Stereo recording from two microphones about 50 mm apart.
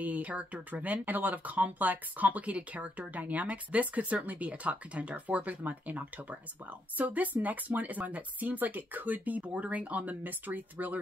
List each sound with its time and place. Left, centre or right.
0.0 s speech: right